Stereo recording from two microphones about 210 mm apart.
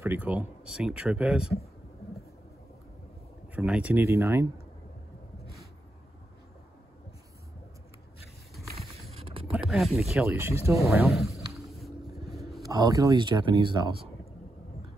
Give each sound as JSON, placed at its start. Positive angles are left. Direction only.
{"t": 0.0, "sound": "speech", "side_deg": -10}
{"t": 3.5, "sound": "speech", "side_deg": -5}
{"t": 9.1, "sound": "vehicle", "side_deg": -25}
{"t": 9.7, "sound": "speech", "side_deg": 0}
{"t": 10.9, "sound": "speech", "side_deg": 0}
{"t": 11.5, "sound": "boat", "side_deg": 0}
{"t": 12.6, "sound": "speech", "side_deg": -15}